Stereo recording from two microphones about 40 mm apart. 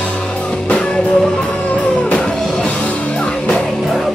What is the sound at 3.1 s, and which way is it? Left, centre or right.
Music, left.